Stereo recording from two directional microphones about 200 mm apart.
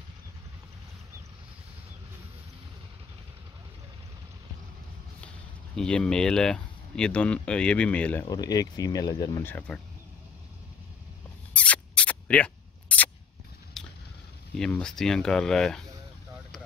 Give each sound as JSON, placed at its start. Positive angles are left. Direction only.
{"t": 5.8, "sound": "speech", "side_deg": 5}
{"t": 8.3, "sound": "speech", "side_deg": 20}
{"t": 11.5, "sound": "a sound", "side_deg": 5}
{"t": 14.6, "sound": "speech", "side_deg": 5}